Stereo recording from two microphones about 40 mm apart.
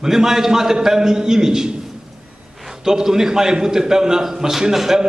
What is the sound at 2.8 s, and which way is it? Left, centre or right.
A man's voice, centre.